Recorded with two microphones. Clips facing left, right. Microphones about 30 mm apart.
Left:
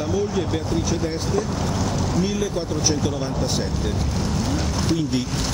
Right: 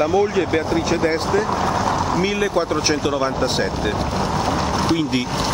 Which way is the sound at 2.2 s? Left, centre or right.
Right.